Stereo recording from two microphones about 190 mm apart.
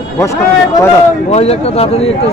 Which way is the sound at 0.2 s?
15° left (ahead or behind).